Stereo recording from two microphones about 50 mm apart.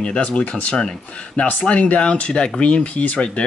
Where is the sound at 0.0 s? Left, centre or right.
Left.